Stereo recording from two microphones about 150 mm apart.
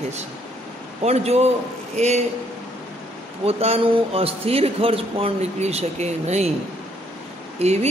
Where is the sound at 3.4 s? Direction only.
40° right (ahead or behind).